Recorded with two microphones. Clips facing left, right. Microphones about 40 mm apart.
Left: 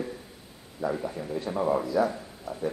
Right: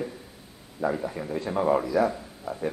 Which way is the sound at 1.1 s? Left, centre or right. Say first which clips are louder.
Right 2 dB; right.